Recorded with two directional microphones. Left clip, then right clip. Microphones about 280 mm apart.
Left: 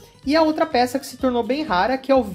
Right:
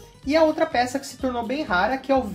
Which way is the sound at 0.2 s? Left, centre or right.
Left.